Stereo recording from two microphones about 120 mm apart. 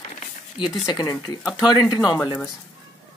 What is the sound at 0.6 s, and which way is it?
Speech, 35° left (ahead or behind).